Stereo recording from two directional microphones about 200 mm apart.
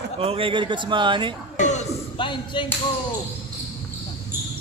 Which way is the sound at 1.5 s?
35° left (ahead or behind).